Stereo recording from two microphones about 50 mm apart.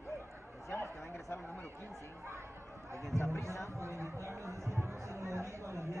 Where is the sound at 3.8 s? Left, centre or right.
Right.